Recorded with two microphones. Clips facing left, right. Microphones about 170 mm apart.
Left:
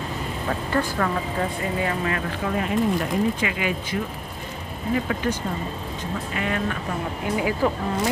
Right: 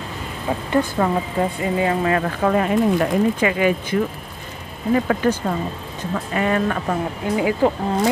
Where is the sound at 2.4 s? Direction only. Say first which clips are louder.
Right 5 dB; 50° right (ahead or behind).